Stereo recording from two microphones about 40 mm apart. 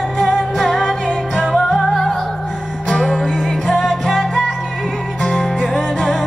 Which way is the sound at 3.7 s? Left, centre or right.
Centre.